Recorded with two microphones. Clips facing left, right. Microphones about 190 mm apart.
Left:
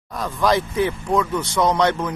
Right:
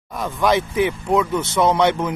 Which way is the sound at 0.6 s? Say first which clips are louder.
Right 1 dB; 20° right (ahead or behind).